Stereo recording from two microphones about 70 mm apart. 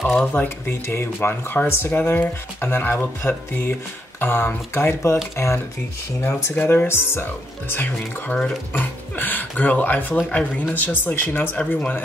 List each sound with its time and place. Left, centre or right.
0.2 s speech: left
6.5 s speech: left
8.4 s speech: centre
9.1 s speech: left